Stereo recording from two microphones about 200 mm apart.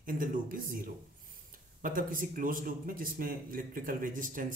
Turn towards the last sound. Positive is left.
turn(degrees=-40)  # may be behind; listen again after turning